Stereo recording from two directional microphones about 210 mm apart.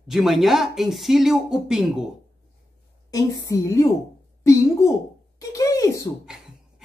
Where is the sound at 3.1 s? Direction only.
15° left (ahead or behind).